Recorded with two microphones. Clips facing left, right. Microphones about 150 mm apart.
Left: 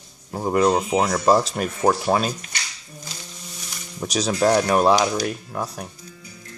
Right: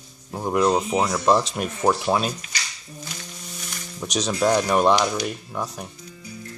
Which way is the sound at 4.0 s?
5° left (ahead or behind).